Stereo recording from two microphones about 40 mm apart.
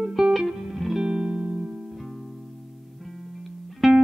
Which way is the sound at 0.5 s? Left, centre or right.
Centre.